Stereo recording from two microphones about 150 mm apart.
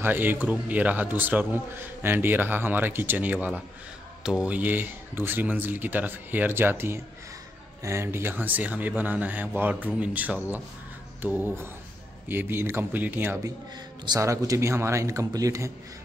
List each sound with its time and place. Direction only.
0.0 s speech: 15° right (ahead or behind)